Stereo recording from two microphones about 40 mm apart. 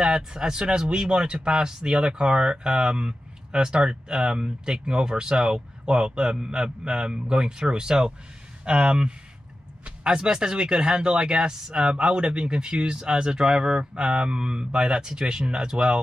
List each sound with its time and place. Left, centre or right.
0.0 s speech: centre